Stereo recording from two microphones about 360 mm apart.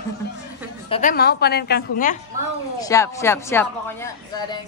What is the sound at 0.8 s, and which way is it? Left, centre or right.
A woman's voice, centre.